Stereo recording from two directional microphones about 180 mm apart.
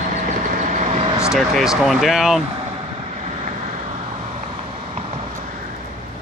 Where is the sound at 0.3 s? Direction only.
40° right (ahead or behind).